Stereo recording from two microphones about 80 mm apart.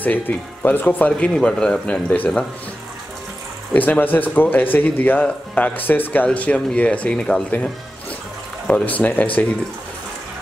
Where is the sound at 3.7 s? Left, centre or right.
Left.